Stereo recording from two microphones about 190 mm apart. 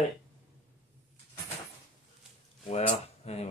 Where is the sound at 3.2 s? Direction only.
35° left (ahead or behind).